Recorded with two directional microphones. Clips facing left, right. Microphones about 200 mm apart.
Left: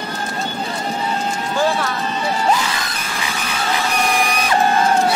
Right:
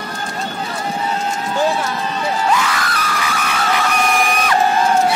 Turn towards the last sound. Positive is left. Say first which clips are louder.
# right 4 dB
turn(degrees=30)  # may be behind; listen again after turning